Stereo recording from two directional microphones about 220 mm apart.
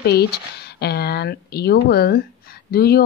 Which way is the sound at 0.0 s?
45° left (ahead or behind).